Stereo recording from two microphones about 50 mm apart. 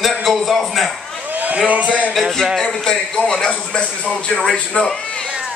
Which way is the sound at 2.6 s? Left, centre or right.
Centre.